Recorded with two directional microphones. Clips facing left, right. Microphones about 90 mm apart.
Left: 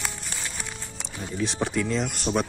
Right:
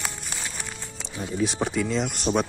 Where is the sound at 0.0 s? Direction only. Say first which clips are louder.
Right 1 dB; 5° right (ahead or behind).